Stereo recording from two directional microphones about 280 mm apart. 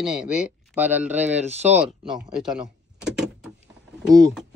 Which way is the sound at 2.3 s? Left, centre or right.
Centre.